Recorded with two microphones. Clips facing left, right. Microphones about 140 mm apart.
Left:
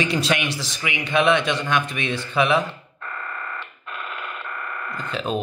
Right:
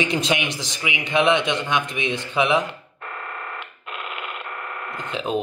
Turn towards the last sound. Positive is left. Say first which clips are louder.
# even
turn(degrees=-20)  # may be behind; listen again after turning